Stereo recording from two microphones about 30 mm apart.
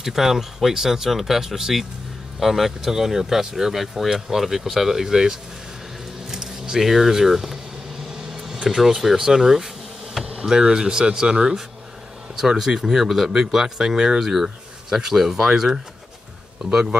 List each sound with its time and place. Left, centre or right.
0.0 s speech: centre
2.9 s speech: centre
6.8 s speech: centre
10.2 s a sound: centre
10.5 s speech: right
12.4 s speech: centre
14.3 s a sound: centre
15.1 s speech: centre
16.6 s speech: right